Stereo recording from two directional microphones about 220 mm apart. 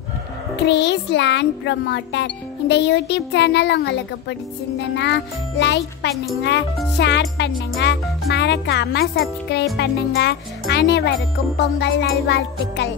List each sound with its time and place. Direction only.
0.6 s a child's voice: 50° left (ahead or behind)